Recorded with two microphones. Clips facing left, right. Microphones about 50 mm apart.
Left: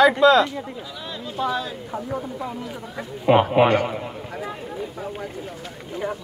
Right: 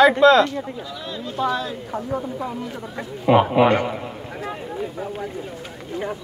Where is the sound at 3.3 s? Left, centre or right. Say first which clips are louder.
Right 1 dB; centre.